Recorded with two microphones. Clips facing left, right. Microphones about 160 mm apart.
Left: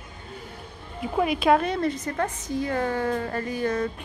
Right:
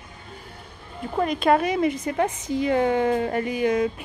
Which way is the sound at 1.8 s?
15° right (ahead or behind).